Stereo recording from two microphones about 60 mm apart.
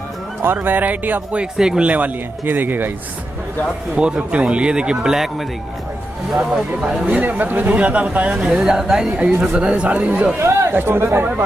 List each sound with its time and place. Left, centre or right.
0.6 s speech: right
1.4 s speech: centre
1.9 s speech: right
3.9 s speech: centre
6.3 s speech: centre
7.1 s speech: right
10.4 s a sound: right
10.7 s speech: right